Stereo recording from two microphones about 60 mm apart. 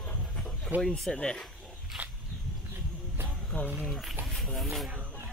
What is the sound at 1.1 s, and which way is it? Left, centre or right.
Speech, centre.